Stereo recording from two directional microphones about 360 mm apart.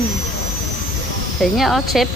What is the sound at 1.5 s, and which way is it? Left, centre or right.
Speech, centre.